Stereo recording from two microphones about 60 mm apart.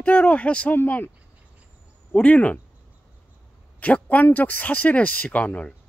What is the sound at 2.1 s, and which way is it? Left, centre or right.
Speech, left.